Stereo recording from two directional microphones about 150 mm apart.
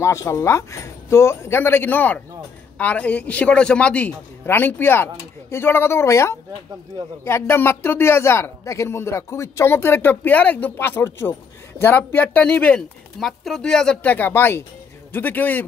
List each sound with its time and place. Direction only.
0.0 s speech: 20° left (ahead or behind)